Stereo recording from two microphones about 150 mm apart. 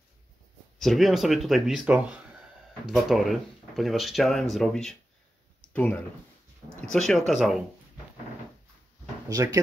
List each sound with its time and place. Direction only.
0.7 s speech: centre (ahead or behind)
5.6 s a sound: 10° left (ahead or behind)
6.8 s speech: 5° left (ahead or behind)
9.3 s speech: 25° right (ahead or behind)